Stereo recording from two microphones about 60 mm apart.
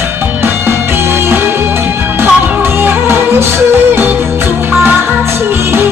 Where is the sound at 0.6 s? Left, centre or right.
Right.